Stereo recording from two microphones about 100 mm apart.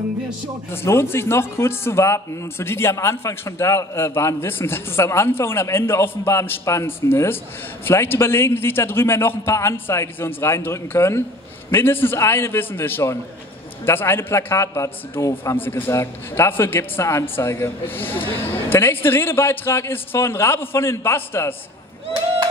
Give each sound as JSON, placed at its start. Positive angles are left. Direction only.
{"t": 0.7, "sound": "a man's voice", "side_deg": 25}